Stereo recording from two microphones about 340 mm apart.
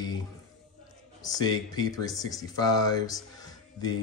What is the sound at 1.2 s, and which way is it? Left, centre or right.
Speech, centre.